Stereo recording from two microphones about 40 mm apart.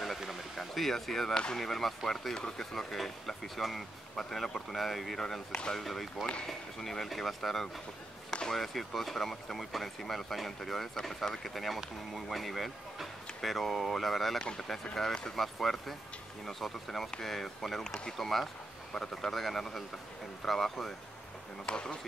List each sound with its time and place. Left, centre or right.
0.2 s a sound: centre
1.3 s bee: centre
1.6 s speech: centre
18.1 s speech: centre
21.6 s bee: centre